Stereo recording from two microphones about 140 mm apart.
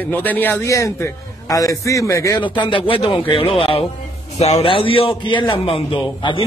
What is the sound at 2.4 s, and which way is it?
A man's voice, 35° left (ahead or behind).